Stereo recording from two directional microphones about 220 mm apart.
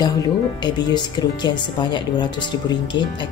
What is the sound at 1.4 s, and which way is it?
Speech, 20° left (ahead or behind).